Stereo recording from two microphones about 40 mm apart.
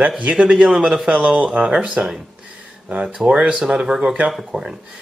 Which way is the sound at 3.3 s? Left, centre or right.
Right.